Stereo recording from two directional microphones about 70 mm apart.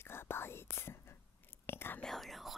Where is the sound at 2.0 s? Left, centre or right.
Centre.